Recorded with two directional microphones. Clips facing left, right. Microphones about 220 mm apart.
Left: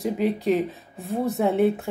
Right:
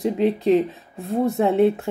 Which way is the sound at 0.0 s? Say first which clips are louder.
Right 4 dB; centre (ahead or behind).